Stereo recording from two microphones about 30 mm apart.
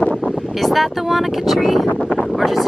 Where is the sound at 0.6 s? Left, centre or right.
Centre.